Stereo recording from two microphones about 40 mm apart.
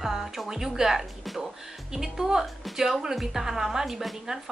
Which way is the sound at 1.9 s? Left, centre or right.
Centre.